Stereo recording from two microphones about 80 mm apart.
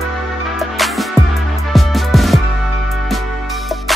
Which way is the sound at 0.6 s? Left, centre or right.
Centre.